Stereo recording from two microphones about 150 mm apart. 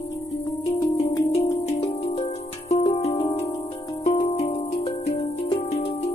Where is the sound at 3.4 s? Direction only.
25° left (ahead or behind).